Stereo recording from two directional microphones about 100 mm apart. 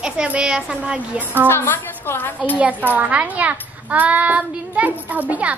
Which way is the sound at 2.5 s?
15° right (ahead or behind).